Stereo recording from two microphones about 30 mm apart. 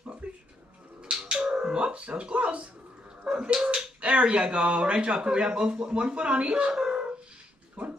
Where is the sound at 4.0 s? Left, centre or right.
Right.